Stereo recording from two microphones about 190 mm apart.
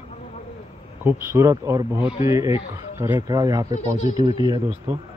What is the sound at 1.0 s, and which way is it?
Speech, 15° right (ahead or behind).